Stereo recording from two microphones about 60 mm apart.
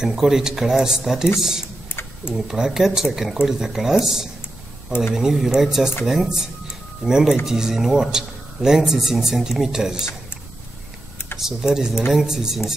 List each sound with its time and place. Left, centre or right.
0.0 s speech: centre
1.9 s a sound: left
2.3 s speech: centre
11.3 s speech: centre